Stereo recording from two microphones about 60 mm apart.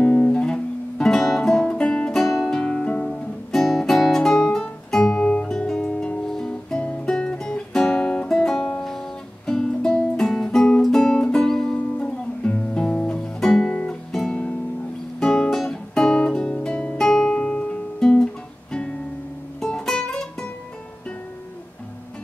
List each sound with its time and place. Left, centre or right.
0.0 s music: centre
3.1 s guitar: centre
5.2 s music: centre
15.1 s guitar: centre
19.6 s music: centre